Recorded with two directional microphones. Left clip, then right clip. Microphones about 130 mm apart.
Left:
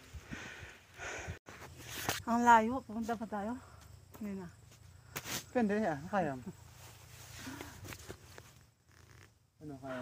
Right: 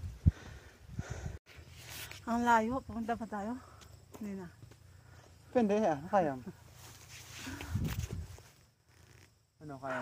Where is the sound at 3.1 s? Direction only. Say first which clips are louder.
Even; 15° left (ahead or behind).